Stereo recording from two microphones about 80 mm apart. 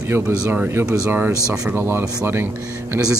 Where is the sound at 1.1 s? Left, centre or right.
Right.